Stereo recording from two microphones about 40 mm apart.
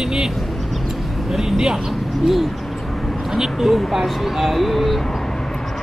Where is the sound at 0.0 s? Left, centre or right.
Centre.